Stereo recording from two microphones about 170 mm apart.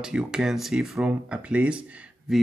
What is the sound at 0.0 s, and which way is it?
Speech, 5° right (ahead or behind).